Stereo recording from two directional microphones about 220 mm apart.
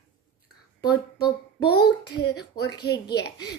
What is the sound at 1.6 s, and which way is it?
A child's voice, 45° left (ahead or behind).